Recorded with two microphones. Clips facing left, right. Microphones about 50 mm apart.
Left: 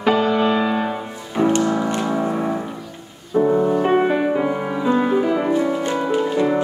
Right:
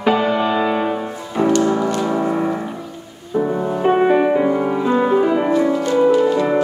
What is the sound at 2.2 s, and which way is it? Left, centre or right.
Music, centre.